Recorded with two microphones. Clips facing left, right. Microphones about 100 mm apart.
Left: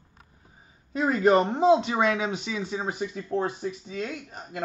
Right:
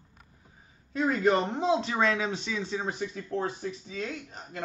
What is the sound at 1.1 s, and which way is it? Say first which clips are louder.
Speech: left 6 dB; 10° left (ahead or behind).